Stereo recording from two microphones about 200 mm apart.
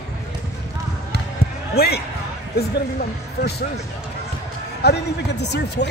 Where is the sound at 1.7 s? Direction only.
50° left (ahead or behind).